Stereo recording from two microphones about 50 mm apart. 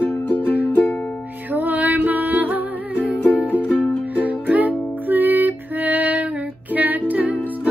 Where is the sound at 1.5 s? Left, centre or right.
Right.